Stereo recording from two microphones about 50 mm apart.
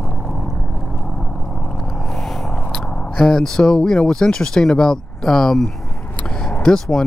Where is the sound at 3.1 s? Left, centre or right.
Centre.